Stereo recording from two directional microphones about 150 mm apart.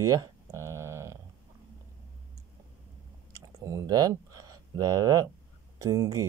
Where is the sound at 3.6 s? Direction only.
20° right (ahead or behind).